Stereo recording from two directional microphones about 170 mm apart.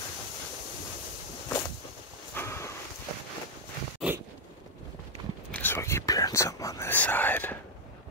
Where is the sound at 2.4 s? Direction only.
15° left (ahead or behind).